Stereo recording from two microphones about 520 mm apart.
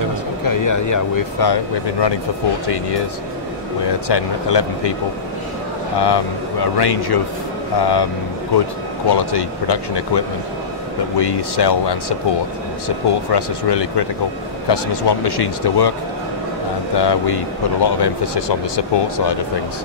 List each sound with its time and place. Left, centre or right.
0.5 s speech: left
4.1 s speech: left
5.9 s speech: left
16.9 s speech: left